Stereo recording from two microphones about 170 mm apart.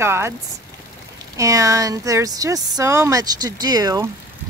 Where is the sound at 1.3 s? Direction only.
20° right (ahead or behind).